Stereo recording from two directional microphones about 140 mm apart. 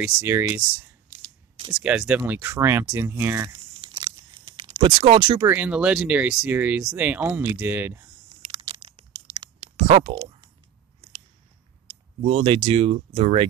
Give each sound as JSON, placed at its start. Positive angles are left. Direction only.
{"t": 0.0, "sound": "speech", "side_deg": -15}
{"t": 1.7, "sound": "speech", "side_deg": -5}
{"t": 3.4, "sound": "crumpling", "side_deg": -35}
{"t": 4.6, "sound": "speech", "side_deg": -35}
{"t": 5.4, "sound": "speech", "side_deg": -15}
{"t": 8.4, "sound": "a sound", "side_deg": -35}
{"t": 12.3, "sound": "speech", "side_deg": -45}